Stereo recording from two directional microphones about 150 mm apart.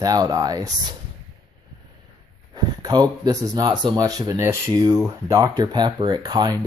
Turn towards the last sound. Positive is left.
turn(degrees=-30)  # may be behind; listen again after turning